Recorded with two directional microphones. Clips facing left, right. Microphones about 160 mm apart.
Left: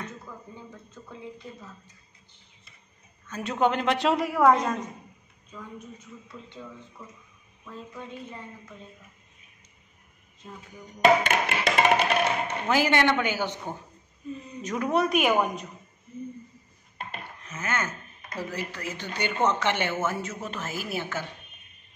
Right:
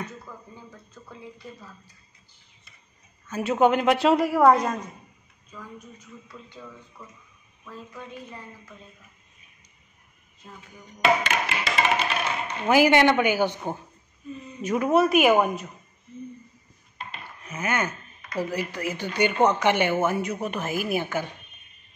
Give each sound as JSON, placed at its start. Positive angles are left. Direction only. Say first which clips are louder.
{"t": 3.3, "sound": "a woman's voice", "louder": "right 5 dB", "side_deg": -10}
{"t": 7.7, "sound": "a woman's voice", "louder": "even", "side_deg": 25}
{"t": 11.0, "sound": "speech", "louder": "left 2 dB", "side_deg": 50}
{"t": 12.6, "sound": "a woman's voice", "louder": "right 5 dB", "side_deg": -10}
{"t": 17.0, "sound": "a sound", "louder": "left 1 dB", "side_deg": 55}
{"t": 17.4, "sound": "a woman's voice", "louder": "right 4 dB", "side_deg": -10}